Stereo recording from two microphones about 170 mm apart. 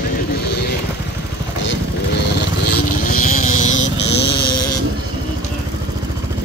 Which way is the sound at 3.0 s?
50° left (ahead or behind).